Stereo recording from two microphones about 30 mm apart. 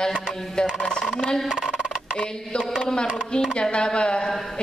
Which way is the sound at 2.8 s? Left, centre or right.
Left.